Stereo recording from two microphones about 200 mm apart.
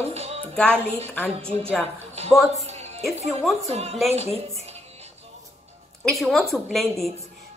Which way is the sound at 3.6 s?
30° right (ahead or behind).